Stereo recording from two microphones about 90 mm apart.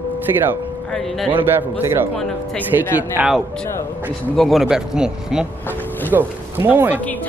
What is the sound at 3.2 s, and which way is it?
Speech, 15° right (ahead or behind).